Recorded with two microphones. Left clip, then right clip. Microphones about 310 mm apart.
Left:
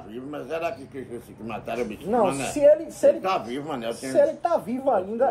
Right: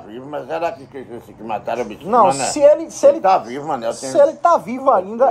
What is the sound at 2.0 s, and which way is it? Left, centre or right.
Speech, right.